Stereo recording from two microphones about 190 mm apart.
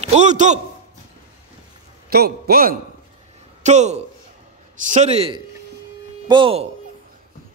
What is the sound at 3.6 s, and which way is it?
A man's voice, 35° right (ahead or behind).